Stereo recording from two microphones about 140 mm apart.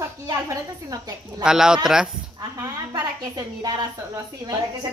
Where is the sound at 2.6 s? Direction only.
25° right (ahead or behind).